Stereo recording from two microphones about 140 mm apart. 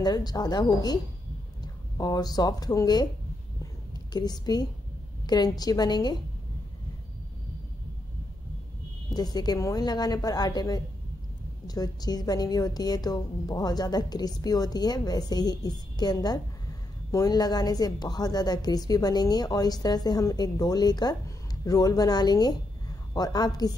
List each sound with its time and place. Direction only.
0.0 s a woman's voice: 30° left (ahead or behind)
2.0 s a woman's voice: 30° left (ahead or behind)
9.1 s a woman's voice: 30° left (ahead or behind)